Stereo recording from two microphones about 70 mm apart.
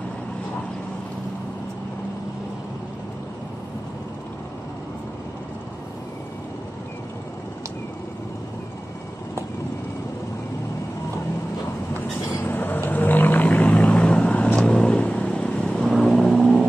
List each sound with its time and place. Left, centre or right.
12.4 s vehicle: left; by 16.6 s centre